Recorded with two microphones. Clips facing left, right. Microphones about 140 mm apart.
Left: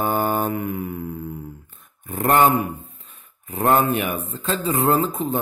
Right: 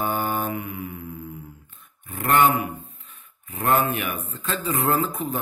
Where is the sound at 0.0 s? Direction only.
45° left (ahead or behind).